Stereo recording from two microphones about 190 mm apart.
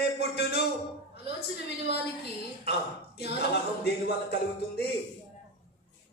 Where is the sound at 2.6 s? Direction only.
60° left (ahead or behind).